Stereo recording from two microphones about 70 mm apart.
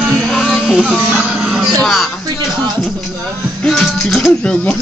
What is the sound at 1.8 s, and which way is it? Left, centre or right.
Speech, centre.